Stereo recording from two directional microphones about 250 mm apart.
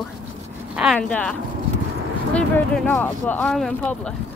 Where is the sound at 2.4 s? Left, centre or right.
Centre.